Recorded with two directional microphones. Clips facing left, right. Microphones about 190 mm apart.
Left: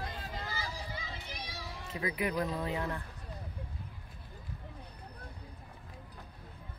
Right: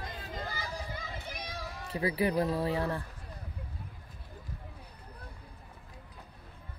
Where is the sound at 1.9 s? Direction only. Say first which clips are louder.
Right 5 dB; 30° right (ahead or behind).